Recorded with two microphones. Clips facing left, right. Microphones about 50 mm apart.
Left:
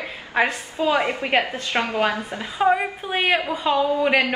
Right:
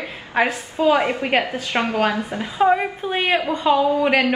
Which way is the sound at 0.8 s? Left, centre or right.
Centre.